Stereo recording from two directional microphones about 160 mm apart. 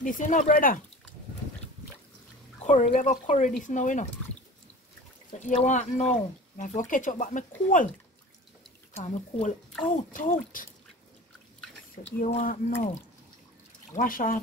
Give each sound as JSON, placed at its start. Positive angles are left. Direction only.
{"t": 0.0, "sound": "speech", "side_deg": 50}
{"t": 2.6, "sound": "speech", "side_deg": 45}
{"t": 5.4, "sound": "speech", "side_deg": 50}
{"t": 8.9, "sound": "speech", "side_deg": 45}
{"t": 9.8, "sound": "speech", "side_deg": 55}
{"t": 12.0, "sound": "speech", "side_deg": 60}
{"t": 13.9, "sound": "speech", "side_deg": 60}